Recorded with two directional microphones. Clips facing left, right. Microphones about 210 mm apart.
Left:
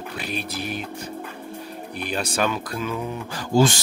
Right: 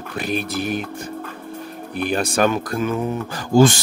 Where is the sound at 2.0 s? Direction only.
50° right (ahead or behind).